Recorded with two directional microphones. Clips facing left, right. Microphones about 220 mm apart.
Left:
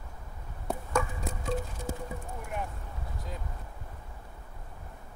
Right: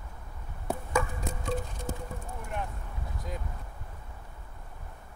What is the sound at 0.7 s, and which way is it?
Chop, centre (ahead or behind).